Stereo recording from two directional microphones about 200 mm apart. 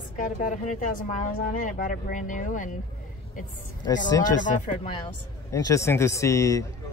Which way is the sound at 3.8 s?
20° left (ahead or behind).